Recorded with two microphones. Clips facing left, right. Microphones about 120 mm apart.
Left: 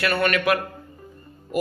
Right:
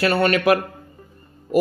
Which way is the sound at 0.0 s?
35° right (ahead or behind).